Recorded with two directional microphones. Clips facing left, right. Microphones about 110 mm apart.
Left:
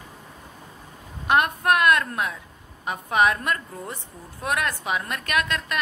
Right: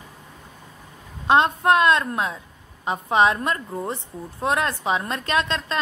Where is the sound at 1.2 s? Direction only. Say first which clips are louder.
Right 3 dB; 25° right (ahead or behind).